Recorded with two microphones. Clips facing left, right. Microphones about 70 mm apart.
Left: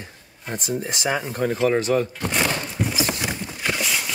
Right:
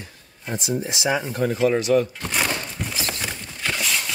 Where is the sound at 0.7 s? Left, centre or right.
Left.